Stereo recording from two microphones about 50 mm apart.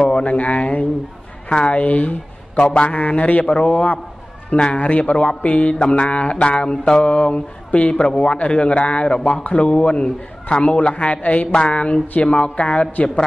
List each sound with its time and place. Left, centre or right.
0.0 s a man's voice: left
4.5 s speech: left